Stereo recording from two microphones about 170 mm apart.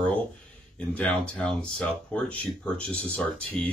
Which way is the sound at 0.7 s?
5° left (ahead or behind).